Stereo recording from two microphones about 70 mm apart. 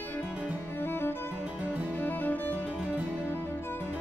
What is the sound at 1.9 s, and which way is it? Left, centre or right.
Music, left.